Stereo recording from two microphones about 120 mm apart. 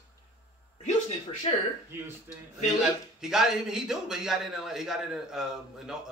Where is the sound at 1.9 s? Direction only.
20° right (ahead or behind).